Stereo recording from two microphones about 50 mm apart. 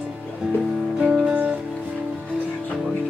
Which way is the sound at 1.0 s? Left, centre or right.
Centre.